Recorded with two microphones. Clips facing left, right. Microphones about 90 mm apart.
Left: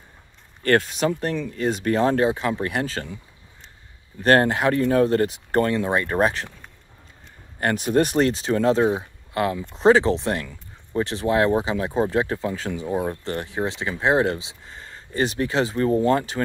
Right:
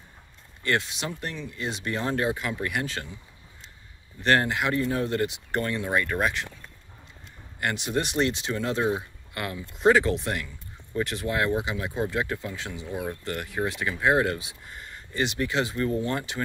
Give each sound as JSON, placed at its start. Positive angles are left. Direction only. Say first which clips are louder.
{"t": 0.6, "sound": "speech", "louder": "left 8 dB", "side_deg": 50}
{"t": 4.2, "sound": "speech", "louder": "left 6 dB", "side_deg": 40}
{"t": 7.6, "sound": "speech", "louder": "left 8 dB", "side_deg": 45}